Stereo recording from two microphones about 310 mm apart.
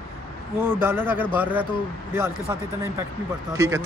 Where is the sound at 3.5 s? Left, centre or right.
Centre.